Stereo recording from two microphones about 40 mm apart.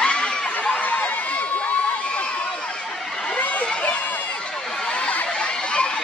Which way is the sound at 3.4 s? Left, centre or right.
Left.